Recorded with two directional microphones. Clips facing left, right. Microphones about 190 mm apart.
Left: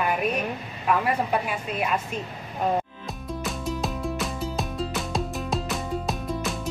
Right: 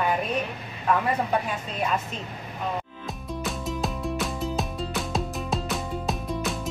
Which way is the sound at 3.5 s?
Centre (ahead or behind).